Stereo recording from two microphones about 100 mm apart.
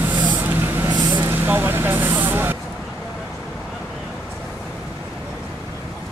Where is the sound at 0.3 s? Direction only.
15° right (ahead or behind).